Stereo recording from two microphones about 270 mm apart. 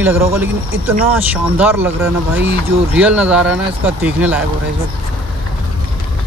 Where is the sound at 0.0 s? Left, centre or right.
Centre.